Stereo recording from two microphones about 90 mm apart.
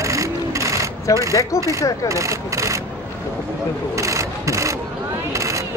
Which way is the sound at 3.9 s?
35° right (ahead or behind).